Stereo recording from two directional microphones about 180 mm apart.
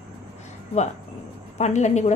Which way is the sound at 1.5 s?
40° left (ahead or behind).